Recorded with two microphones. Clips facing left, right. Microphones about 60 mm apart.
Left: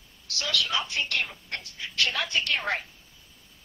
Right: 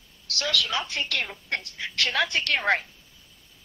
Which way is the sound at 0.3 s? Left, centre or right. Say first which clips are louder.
Right 2 dB; right.